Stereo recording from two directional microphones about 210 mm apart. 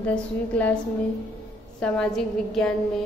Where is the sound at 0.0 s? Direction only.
5° left (ahead or behind).